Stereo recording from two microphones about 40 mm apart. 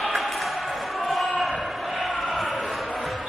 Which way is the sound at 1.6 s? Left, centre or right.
Centre.